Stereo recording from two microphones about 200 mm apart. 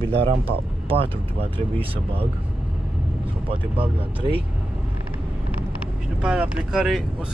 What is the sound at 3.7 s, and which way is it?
Speech, 25° right (ahead or behind).